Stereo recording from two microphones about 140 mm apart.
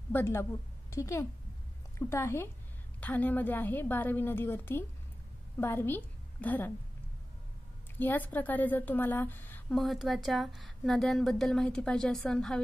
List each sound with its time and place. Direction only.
0.1 s a woman's voice: 15° left (ahead or behind)
8.0 s a woman's voice: 15° left (ahead or behind)
9.7 s a woman's voice: centre (ahead or behind)